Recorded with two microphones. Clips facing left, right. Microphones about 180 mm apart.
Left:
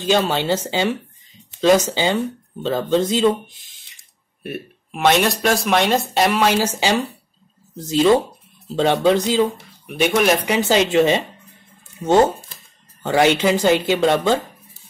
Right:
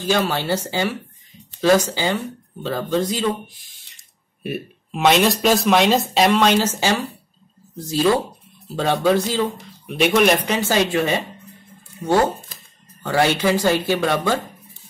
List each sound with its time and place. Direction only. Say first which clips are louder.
0.0 s speech: left 2 dB; 20° left (ahead or behind)
4.4 s speech: right 2 dB; centre (ahead or behind); by 9.9 s 15° left (ahead or behind)
9.9 s speech: right 1 dB; centre (ahead or behind); by 14.4 s 20° left (ahead or behind)